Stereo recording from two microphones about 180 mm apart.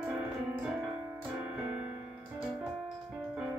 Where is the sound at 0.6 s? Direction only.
5° right (ahead or behind).